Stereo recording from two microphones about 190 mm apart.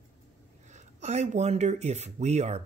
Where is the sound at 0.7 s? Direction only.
35° right (ahead or behind).